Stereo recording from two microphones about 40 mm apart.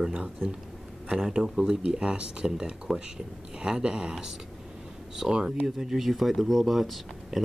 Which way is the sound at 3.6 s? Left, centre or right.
Centre.